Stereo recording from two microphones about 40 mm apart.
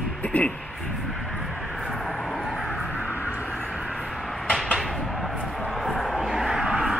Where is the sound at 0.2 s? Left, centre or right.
Left.